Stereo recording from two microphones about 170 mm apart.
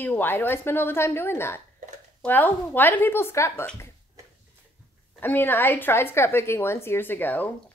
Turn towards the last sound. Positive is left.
turn(degrees=10)  # may be behind; listen again after turning